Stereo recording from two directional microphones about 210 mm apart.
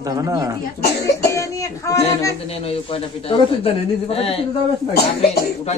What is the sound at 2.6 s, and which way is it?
A man's voice, 25° left (ahead or behind).